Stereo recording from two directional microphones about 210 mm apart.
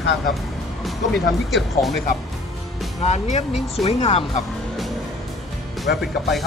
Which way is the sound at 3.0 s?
30° left (ahead or behind).